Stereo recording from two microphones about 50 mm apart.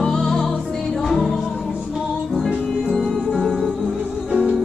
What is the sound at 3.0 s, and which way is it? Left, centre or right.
Music, centre.